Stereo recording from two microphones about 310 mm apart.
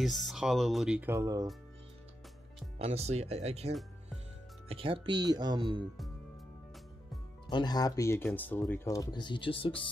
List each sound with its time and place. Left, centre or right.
0.0 s speech: centre
2.8 s speech: centre
7.4 s speech: centre